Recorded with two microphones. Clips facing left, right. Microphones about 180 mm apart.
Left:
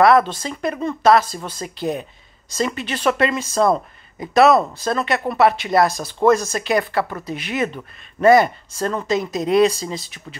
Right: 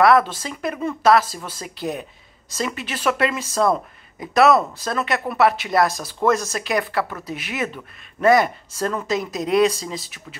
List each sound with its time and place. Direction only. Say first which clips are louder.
0.0 s speech: left 2 dB; centre (ahead or behind)